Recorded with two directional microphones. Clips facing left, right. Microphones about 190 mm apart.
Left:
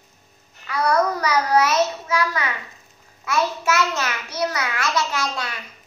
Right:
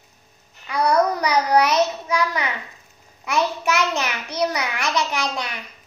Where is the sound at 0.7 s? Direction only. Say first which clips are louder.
Right 1 dB; 15° right (ahead or behind).